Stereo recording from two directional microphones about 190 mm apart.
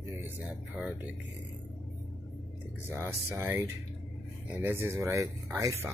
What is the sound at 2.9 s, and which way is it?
Speech, 10° right (ahead or behind).